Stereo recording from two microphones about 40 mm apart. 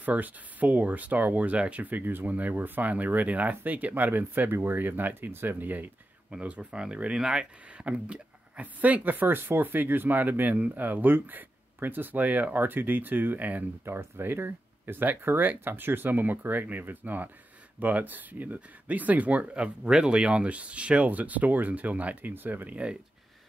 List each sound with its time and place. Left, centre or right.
0.0 s speech: right
4.7 s speech: right
6.3 s speech: right
7.2 s speech: centre
7.7 s speech: right
12.5 s speech: right
13.4 s speech: right
13.8 s speech: right
19.5 s speech: right
21.1 s speech: right